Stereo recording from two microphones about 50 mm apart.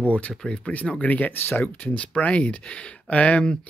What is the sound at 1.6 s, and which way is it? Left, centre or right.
Speech, left.